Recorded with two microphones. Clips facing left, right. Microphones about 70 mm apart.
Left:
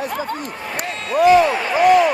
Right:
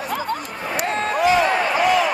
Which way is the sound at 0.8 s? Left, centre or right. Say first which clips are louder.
Left 2 dB; right.